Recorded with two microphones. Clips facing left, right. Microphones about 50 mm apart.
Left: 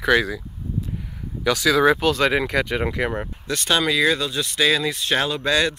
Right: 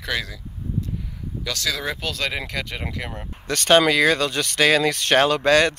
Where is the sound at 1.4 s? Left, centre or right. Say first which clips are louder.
Left 10 dB; centre.